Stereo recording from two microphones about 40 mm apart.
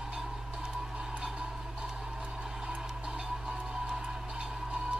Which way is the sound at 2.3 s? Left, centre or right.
Centre.